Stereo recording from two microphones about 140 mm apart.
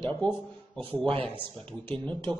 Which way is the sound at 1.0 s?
40° right (ahead or behind).